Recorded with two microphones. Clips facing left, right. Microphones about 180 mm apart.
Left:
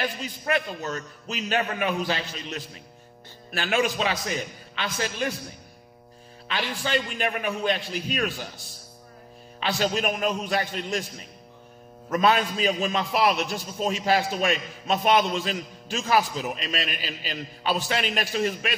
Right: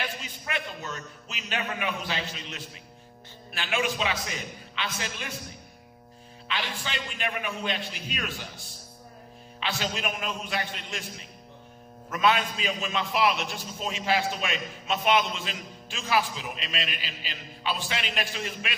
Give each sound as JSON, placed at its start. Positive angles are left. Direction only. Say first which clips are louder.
{"t": 0.5, "sound": "a man's voice", "louder": "left 7 dB", "side_deg": 40}
{"t": 6.4, "sound": "a man's voice", "louder": "left 4 dB", "side_deg": 45}
{"t": 9.6, "sound": "a man's voice", "louder": "left 6 dB", "side_deg": 40}
{"t": 12.1, "sound": "a man's voice", "louder": "left 3 dB", "side_deg": 40}